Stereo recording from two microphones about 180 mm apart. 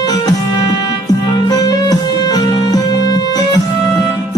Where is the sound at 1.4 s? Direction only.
20° left (ahead or behind).